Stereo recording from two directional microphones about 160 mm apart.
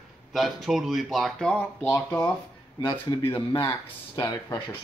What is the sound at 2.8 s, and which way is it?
Speech, 25° left (ahead or behind).